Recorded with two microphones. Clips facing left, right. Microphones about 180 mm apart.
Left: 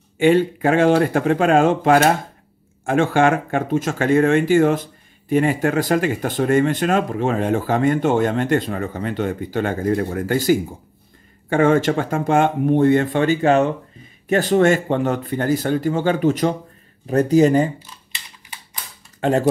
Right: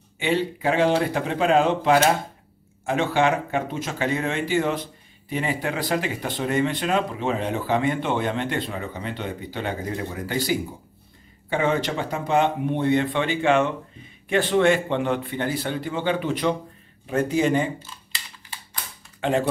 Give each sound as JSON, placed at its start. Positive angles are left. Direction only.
{"t": 0.2, "sound": "speech", "side_deg": 50}
{"t": 17.7, "sound": "a sound", "side_deg": 15}
{"t": 19.2, "sound": "speech", "side_deg": 45}